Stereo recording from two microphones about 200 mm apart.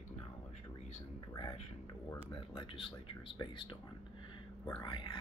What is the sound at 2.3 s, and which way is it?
Speech, 25° left (ahead or behind).